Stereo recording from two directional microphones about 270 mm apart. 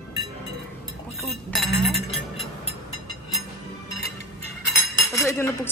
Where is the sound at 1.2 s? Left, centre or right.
Centre.